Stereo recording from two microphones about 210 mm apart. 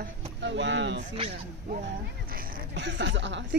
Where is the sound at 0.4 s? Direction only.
60° right (ahead or behind).